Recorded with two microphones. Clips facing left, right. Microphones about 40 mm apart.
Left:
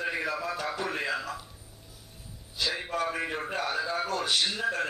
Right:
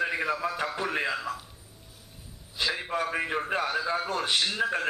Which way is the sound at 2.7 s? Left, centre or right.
Centre.